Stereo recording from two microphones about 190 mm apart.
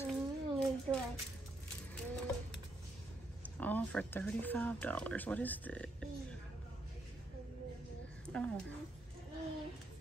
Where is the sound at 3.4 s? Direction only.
10° left (ahead or behind).